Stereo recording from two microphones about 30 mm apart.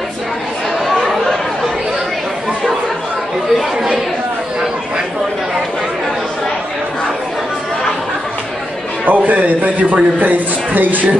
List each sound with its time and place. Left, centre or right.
9.0 s a man's voice: right